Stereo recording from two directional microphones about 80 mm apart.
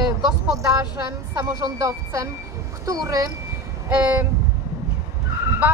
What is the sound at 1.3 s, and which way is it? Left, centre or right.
Speech, right.